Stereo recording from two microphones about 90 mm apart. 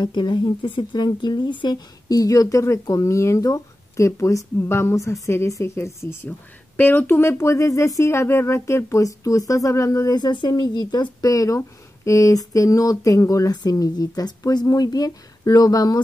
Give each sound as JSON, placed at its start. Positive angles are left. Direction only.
{"t": 0.0, "sound": "speech", "side_deg": 55}
{"t": 2.0, "sound": "speech", "side_deg": 40}